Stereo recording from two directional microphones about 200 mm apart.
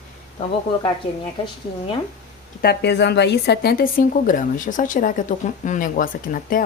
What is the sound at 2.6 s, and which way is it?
A woman's voice, 55° left (ahead or behind).